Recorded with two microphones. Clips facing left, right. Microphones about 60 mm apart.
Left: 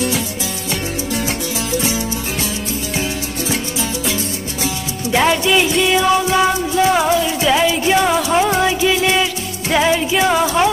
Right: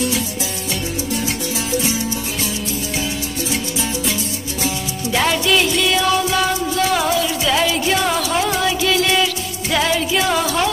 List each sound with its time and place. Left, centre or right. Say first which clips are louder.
5.1 s music: left 3 dB; centre